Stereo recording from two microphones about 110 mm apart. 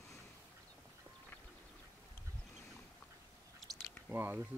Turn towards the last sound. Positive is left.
turn(degrees=-20)  # may be behind; listen again after turning